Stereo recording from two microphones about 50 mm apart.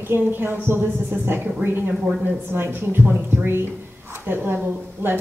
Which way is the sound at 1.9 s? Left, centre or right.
Centre.